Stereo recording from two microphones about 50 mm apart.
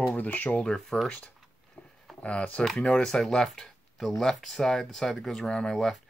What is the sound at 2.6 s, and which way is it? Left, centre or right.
Speech, centre.